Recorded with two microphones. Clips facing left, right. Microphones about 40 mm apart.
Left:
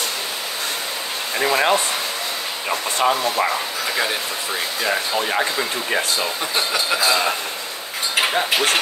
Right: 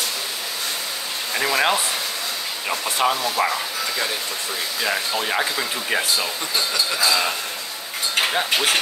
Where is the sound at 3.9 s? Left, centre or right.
Left.